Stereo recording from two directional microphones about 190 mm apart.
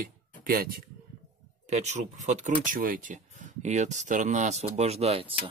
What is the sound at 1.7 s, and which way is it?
Speech, 35° right (ahead or behind).